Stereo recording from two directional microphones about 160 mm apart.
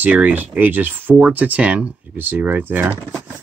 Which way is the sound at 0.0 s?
10° right (ahead or behind).